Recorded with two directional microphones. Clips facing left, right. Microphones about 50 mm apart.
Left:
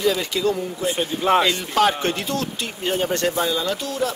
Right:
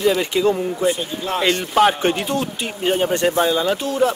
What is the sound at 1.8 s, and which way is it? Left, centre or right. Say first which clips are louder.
A man's voice: right 3 dB; centre.